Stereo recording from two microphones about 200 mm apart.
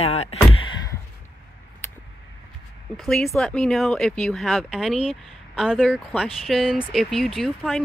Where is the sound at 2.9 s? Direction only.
Centre (ahead or behind).